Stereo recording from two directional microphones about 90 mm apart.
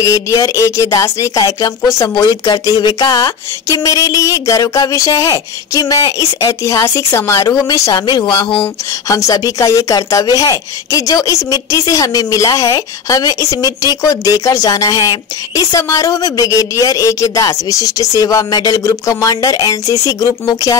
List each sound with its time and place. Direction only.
0.0 s speech: 40° left (ahead or behind)